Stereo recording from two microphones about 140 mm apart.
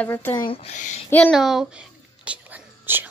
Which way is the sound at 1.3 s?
Centre (ahead or behind).